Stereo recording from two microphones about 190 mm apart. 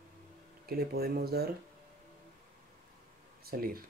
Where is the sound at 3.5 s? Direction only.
50° right (ahead or behind).